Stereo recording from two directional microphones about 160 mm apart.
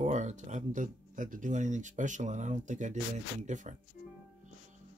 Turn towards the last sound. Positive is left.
turn(degrees=-50)  # may be behind; listen again after turning